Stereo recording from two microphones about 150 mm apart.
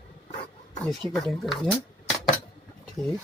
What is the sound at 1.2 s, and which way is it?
Speech, centre (ahead or behind).